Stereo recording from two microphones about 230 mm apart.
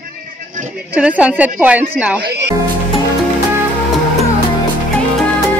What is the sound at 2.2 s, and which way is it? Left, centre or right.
Speech, right.